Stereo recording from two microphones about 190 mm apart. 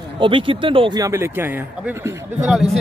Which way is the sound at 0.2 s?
25° right (ahead or behind).